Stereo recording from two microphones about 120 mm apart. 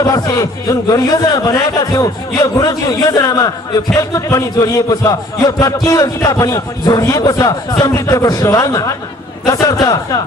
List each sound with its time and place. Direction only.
0.0 s a man's voice: 30° left (ahead or behind)